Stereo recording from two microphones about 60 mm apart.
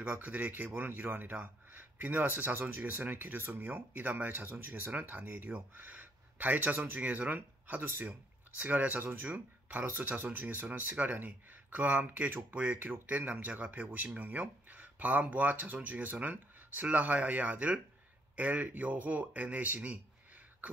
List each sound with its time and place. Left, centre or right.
0.0 s speech: right